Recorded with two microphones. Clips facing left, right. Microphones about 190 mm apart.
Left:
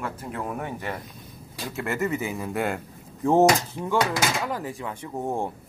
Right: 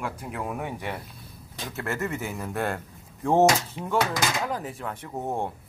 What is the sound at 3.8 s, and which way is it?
Speech, 5° right (ahead or behind).